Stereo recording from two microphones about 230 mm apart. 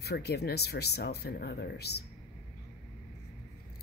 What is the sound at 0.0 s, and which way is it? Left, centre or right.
Speech, left.